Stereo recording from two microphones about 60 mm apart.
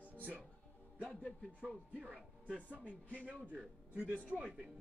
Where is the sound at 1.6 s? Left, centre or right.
Centre.